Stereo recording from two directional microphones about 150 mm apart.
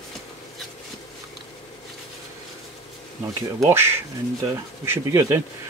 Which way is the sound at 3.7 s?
15° right (ahead or behind).